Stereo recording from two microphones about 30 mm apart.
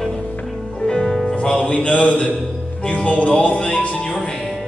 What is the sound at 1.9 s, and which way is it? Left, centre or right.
Speech, left.